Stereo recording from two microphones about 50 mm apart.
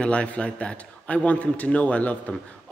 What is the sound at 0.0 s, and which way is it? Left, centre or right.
A man's voice, left.